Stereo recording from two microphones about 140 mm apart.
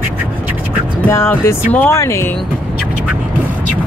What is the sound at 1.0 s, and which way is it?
Speech, 15° left (ahead or behind).